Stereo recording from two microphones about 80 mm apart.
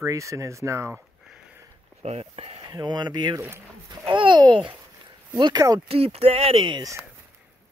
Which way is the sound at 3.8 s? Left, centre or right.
Right.